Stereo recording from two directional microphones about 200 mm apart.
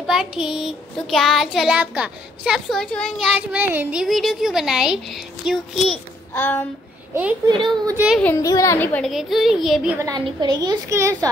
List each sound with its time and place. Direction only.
0.0 s child singing: centre (ahead or behind)
6.3 s a sound: 10° left (ahead or behind)
7.4 s a woman's voice: 20° right (ahead or behind)
7.9 s speech: 10° right (ahead or behind)
8.2 s child singing: 10° left (ahead or behind)
9.9 s a woman's voice: 20° right (ahead or behind)